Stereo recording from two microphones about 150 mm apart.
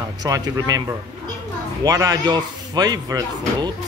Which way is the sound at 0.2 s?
25° right (ahead or behind).